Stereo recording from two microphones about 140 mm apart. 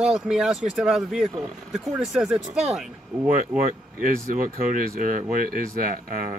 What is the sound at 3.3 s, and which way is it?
Speech, 70° right (ahead or behind).